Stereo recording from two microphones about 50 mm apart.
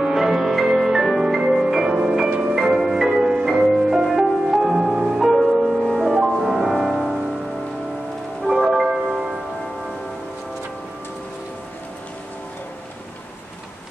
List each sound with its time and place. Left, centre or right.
0.0 s music: centre
5.3 s music: centre
8.5 s music: centre